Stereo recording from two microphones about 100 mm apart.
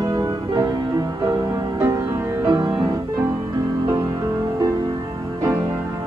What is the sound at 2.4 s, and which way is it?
Music, 35° right (ahead or behind).